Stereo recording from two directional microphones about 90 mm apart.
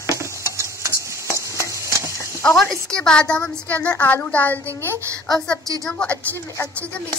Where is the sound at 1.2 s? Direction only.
35° left (ahead or behind).